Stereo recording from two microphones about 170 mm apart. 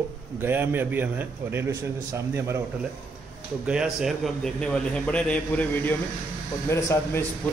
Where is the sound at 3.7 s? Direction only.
5° right (ahead or behind); by 7.2 s 15° left (ahead or behind).